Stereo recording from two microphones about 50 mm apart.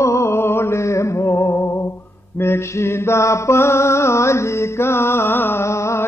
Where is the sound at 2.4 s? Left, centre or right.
Left.